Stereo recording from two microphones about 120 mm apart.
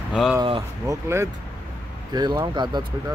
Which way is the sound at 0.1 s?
5° right (ahead or behind).